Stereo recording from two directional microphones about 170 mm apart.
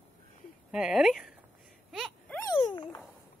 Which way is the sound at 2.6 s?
30° left (ahead or behind).